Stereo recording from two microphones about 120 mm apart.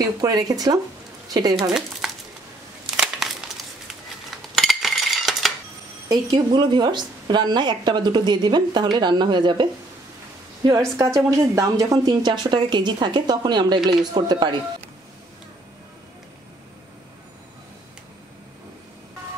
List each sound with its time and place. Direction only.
0.2 s speech: 30° right (ahead or behind)
1.7 s speech: 5° right (ahead or behind)
3.0 s crumpling: 5° right (ahead or behind)
4.6 s a sound: centre (ahead or behind)
6.0 s speech: 35° right (ahead or behind)
11.1 s speech: 30° right (ahead or behind)